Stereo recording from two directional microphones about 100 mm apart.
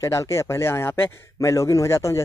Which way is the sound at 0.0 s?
30° left (ahead or behind).